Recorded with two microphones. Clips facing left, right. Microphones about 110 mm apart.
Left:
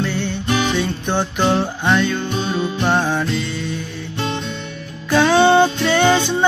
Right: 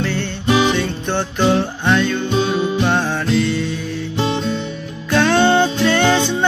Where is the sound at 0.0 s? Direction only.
5° left (ahead or behind).